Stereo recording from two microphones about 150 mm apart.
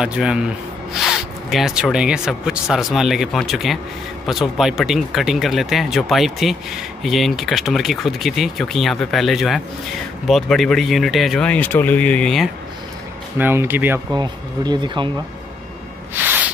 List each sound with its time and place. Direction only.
0.0 s speech: 5° right (ahead or behind)
13.4 s speech: 15° right (ahead or behind)
14.1 s speech: 30° right (ahead or behind)
16.2 s a sound: 10° right (ahead or behind)